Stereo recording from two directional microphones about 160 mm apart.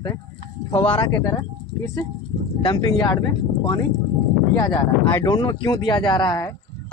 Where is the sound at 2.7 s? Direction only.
25° left (ahead or behind).